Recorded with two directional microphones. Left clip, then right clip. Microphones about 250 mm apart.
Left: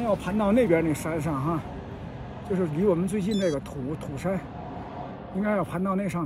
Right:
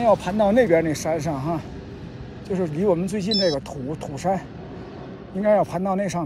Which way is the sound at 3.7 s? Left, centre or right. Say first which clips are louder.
Right 4 dB; left.